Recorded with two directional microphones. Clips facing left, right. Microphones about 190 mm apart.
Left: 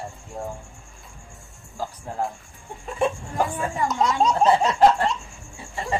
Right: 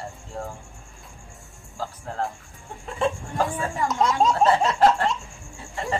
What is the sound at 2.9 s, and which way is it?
Speech, 15° left (ahead or behind).